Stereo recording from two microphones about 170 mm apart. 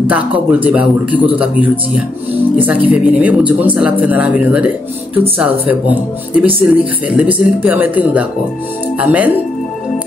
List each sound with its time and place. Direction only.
0.1 s speech: 10° right (ahead or behind)